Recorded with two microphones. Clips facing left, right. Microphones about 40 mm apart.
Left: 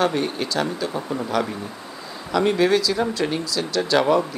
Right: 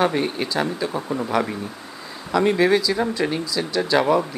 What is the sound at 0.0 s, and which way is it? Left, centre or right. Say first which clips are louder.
Speech: right 1 dB; centre.